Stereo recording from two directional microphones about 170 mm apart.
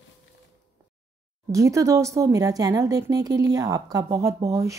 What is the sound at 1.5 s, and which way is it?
A woman's voice, 20° right (ahead or behind).